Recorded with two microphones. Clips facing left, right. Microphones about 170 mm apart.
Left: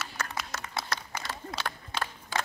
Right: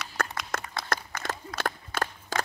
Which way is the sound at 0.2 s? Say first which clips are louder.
Right 6 dB; 55° right (ahead or behind).